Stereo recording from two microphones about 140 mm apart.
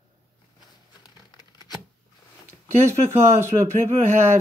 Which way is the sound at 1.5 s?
30° left (ahead or behind).